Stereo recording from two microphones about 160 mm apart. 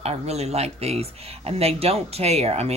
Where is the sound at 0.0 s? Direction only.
40° right (ahead or behind).